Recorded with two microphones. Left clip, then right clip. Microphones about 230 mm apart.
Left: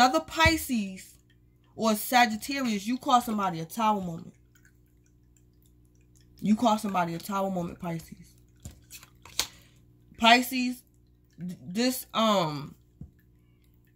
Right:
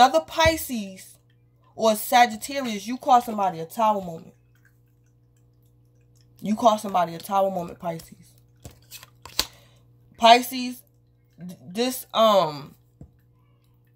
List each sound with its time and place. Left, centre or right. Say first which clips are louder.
0.0 s speech: right 5 dB; centre
1.8 s speech: right 5 dB; left
6.3 s speech: right 6 dB; left
8.9 s tearing: right 5 dB; centre
10.2 s a woman's voice: right 5 dB; centre